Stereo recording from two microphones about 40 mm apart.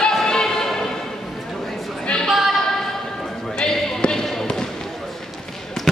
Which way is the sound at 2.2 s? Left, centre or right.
Centre.